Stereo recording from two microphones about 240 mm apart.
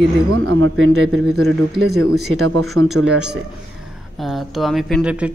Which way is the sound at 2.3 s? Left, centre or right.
Right.